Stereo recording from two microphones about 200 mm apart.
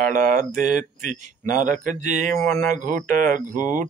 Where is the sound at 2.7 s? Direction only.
40° right (ahead or behind).